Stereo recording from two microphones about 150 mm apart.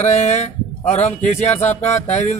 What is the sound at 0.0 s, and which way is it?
Speech, 50° left (ahead or behind).